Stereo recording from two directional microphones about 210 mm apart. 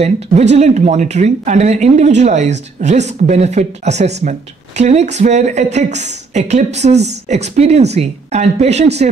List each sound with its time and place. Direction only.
0.0 s speech: 30° right (ahead or behind)